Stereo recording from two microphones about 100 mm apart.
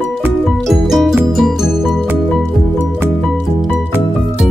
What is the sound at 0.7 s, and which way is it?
Music, centre (ahead or behind).